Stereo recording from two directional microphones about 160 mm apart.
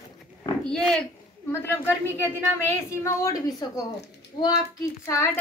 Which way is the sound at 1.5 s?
15° left (ahead or behind).